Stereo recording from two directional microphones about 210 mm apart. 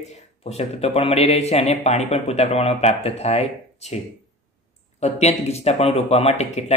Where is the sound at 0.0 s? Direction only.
30° left (ahead or behind).